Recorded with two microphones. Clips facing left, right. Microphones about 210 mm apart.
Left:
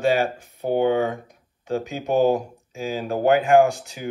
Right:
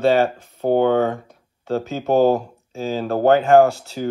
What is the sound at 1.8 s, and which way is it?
Speech, 15° left (ahead or behind).